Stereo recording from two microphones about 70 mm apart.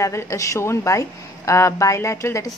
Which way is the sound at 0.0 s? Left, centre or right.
Left.